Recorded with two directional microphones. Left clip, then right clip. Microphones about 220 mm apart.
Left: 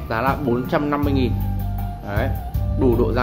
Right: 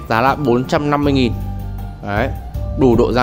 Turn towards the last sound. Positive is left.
turn(degrees=-50)  # may be behind; listen again after turning